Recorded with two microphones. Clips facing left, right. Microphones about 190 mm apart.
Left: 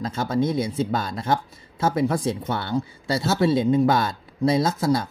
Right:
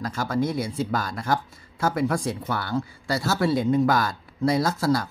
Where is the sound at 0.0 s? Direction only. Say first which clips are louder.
Left 2 dB; 25° left (ahead or behind).